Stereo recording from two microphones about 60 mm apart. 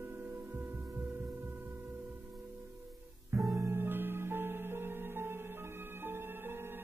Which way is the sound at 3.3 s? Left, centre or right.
Right.